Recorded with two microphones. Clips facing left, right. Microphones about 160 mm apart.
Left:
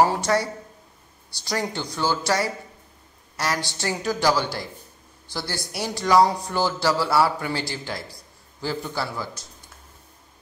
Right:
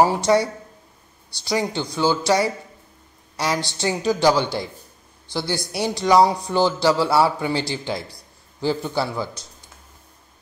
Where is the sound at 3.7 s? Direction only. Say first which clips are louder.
Right 5 dB; 20° right (ahead or behind).